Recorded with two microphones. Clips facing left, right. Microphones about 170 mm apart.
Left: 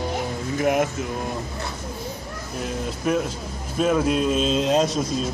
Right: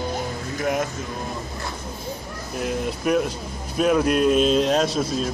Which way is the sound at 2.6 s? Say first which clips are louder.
Right 3 dB; 5° right (ahead or behind).